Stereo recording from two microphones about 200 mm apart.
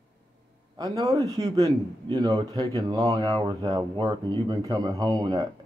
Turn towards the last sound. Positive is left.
turn(degrees=-20)  # may be behind; listen again after turning